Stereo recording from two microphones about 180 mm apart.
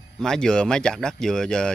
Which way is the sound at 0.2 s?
5° left (ahead or behind).